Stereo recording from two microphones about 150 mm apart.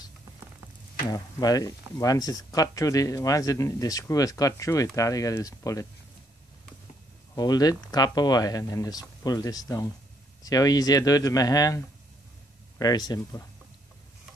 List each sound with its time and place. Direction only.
1.0 s speech: 25° left (ahead or behind)
7.3 s speech: 25° left (ahead or behind)